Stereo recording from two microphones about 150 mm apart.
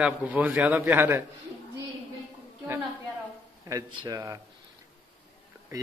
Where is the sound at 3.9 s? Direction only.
25° right (ahead or behind).